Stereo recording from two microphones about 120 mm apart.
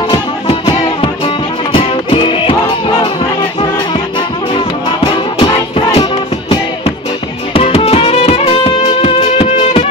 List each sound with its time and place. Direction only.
0.5 s music: 45° left (ahead or behind)
4.6 s music: 45° left (ahead or behind)
7.5 s music: 55° left (ahead or behind)